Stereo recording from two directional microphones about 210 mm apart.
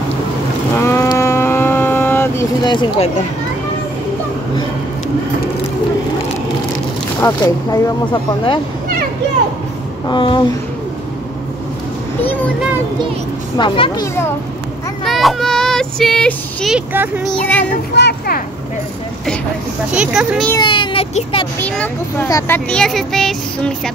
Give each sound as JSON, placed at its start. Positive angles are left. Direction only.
{"t": 0.8, "sound": "a sound", "side_deg": 15}
{"t": 7.2, "sound": "speech", "side_deg": 15}
{"t": 10.0, "sound": "a child's voice", "side_deg": 20}
{"t": 12.2, "sound": "speech", "side_deg": 10}
{"t": 13.6, "sound": "a child's voice", "side_deg": 25}
{"t": 15.0, "sound": "speech", "side_deg": 0}
{"t": 17.3, "sound": "speech", "side_deg": 10}
{"t": 17.9, "sound": "speech", "side_deg": 50}
{"t": 19.9, "sound": "speech", "side_deg": -5}
{"t": 20.6, "sound": "a child's voice", "side_deg": 20}
{"t": 21.5, "sound": "speech", "side_deg": 5}